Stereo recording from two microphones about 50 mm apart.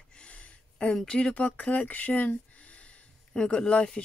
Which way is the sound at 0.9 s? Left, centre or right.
Centre.